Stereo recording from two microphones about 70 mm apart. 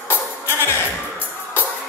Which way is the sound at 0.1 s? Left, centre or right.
Left.